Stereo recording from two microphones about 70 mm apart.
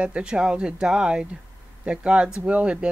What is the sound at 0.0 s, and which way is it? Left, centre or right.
Speech, centre.